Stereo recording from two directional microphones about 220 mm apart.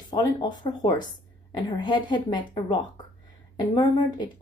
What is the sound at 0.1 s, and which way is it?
Speech, 20° left (ahead or behind).